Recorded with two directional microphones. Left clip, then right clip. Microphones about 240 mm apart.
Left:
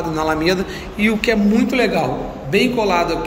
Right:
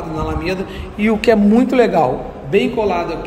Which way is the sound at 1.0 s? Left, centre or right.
Right.